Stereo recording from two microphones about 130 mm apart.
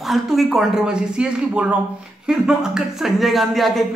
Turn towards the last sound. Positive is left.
turn(degrees=0)  # may be behind; listen again after turning